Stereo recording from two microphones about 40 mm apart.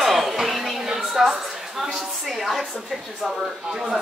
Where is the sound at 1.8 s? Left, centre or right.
Centre.